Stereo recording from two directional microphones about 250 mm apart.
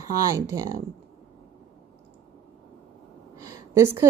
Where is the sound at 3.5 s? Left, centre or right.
Centre.